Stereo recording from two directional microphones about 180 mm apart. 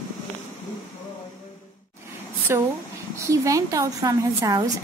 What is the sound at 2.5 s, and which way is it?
A woman's voice, 15° right (ahead or behind).